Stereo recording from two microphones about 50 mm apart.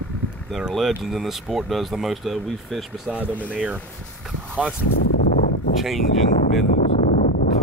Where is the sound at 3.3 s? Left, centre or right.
Right.